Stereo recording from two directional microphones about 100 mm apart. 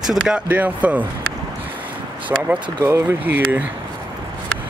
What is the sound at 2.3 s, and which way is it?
Speech, 15° right (ahead or behind).